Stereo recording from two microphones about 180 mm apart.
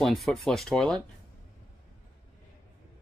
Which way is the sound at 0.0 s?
Centre (ahead or behind).